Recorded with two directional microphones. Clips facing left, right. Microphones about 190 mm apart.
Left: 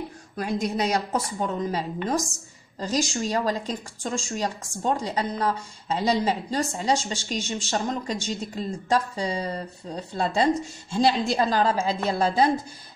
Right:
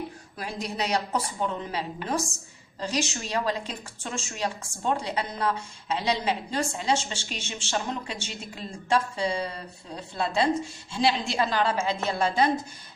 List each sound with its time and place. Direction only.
0.4 s a woman's voice: 45° left (ahead or behind)